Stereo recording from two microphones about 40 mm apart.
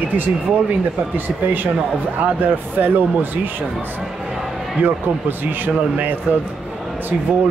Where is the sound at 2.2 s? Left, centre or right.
Right.